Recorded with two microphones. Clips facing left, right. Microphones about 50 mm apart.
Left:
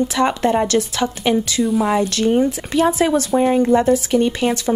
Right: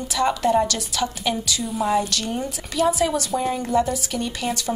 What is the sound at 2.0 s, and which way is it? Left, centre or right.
Speech, left.